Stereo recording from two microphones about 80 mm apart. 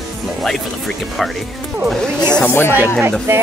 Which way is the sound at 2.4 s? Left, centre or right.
Left.